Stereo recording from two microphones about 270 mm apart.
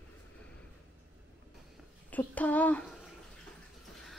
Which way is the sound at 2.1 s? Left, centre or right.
Centre.